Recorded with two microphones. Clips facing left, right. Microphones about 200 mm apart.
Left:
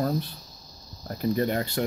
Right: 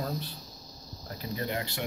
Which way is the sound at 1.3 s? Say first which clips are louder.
Left 8 dB; 45° left (ahead or behind).